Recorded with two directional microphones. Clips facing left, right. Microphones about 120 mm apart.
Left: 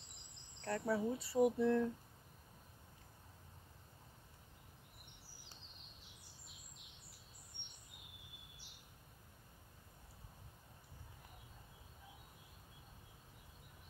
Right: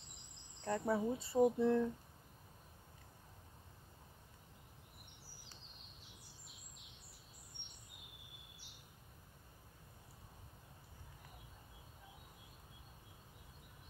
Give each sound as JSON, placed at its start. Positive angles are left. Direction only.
{"t": 0.6, "sound": "speech", "side_deg": -20}